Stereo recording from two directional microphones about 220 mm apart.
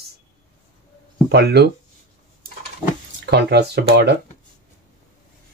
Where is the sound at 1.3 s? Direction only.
50° right (ahead or behind).